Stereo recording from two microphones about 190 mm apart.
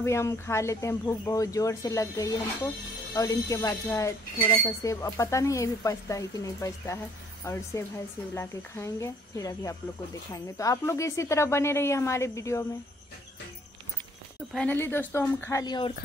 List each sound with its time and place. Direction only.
0.0 s speech: 15° left (ahead or behind)
14.5 s speech: 5° left (ahead or behind)